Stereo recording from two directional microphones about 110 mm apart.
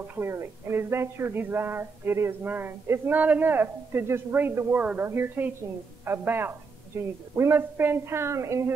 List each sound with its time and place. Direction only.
0.1 s speech: 20° right (ahead or behind)